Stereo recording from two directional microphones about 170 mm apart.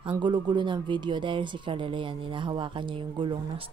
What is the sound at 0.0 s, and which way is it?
A woman's voice, 25° right (ahead or behind).